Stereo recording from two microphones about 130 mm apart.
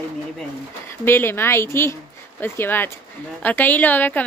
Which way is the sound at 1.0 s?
15° left (ahead or behind).